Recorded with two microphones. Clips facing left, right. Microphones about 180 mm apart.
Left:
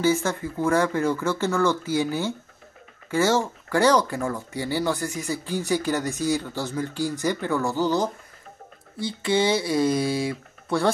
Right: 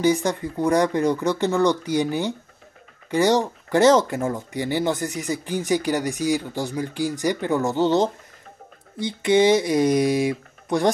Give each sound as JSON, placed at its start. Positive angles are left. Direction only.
{"t": 0.0, "sound": "speech", "side_deg": -15}